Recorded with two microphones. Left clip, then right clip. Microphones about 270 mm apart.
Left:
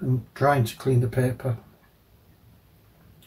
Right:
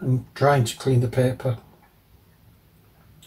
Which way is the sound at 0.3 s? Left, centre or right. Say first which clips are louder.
Right 2 dB; centre.